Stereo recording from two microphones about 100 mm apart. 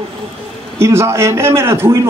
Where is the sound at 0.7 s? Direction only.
25° right (ahead or behind).